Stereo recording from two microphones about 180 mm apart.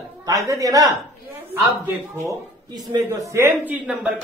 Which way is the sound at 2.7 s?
20° right (ahead or behind).